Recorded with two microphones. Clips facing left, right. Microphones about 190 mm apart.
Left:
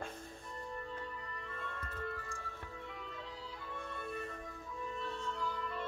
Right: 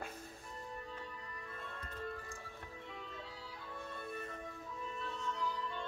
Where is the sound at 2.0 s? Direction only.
20° right (ahead or behind).